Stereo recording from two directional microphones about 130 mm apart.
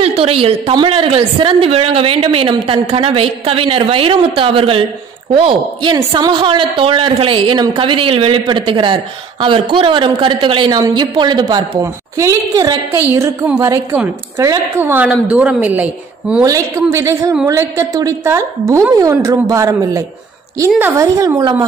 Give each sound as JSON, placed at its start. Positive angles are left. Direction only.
{"t": 0.0, "sound": "a woman's voice", "side_deg": -50}
{"t": 16.4, "sound": "a woman's voice", "side_deg": -25}